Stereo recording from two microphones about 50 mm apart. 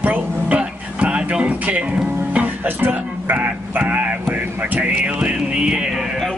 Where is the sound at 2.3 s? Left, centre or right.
Right.